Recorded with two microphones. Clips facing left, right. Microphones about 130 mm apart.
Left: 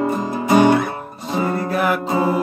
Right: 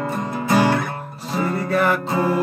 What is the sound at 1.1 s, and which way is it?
Music, centre (ahead or behind).